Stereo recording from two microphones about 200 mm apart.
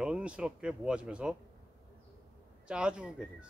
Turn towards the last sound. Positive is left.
turn(degrees=-5)  # may be behind; listen again after turning